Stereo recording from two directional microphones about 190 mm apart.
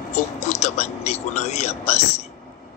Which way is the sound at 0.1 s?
40° left (ahead or behind).